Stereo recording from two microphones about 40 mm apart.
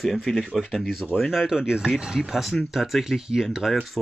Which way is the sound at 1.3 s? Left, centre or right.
Centre.